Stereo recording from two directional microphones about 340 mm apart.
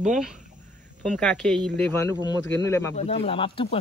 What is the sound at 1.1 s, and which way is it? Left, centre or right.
Speech, centre.